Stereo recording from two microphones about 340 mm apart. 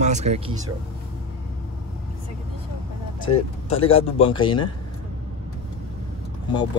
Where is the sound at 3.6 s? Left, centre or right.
Centre.